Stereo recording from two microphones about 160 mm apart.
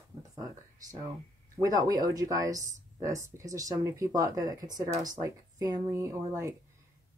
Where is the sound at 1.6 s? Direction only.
20° right (ahead or behind).